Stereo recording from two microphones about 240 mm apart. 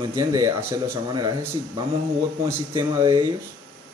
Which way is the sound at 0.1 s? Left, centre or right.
Centre.